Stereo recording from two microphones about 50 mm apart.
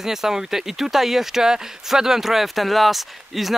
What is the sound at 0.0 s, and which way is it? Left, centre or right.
Speech, centre.